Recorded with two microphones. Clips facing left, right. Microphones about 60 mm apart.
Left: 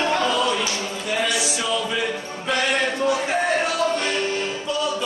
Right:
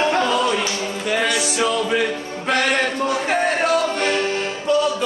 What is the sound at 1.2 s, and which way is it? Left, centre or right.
Music, right.